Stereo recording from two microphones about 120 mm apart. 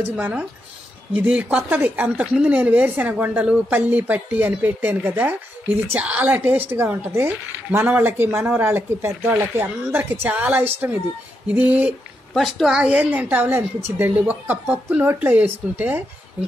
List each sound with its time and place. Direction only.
0.1 s speech: 10° right (ahead or behind)
12.4 s speech: centre (ahead or behind)